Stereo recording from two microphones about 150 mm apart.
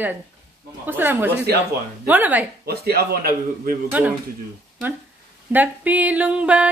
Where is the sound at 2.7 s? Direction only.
90° right; by 3.8 s 75° right (ahead or behind).